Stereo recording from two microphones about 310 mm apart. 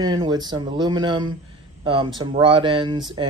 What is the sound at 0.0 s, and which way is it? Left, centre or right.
Speech, centre.